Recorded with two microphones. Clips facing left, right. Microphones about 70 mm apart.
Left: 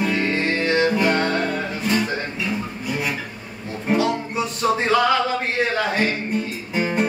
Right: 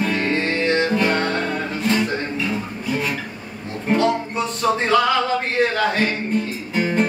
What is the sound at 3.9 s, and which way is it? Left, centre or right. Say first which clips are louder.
Music: right 2 dB; centre.